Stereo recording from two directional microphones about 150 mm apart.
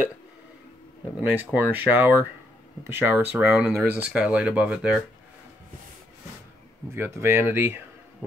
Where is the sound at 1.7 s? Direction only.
10° right (ahead or behind).